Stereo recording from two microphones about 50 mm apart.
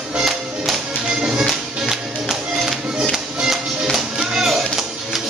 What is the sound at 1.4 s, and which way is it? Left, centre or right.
Music, centre.